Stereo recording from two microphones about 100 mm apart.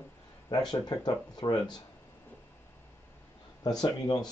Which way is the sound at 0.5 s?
45° left (ahead or behind).